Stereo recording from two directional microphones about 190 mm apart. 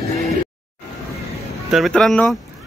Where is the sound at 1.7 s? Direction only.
Centre (ahead or behind).